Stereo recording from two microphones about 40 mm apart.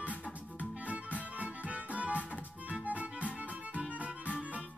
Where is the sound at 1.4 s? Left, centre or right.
Right.